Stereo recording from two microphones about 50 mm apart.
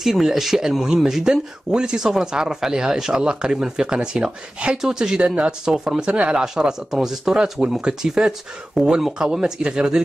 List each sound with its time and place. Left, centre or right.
0.0 s speech: centre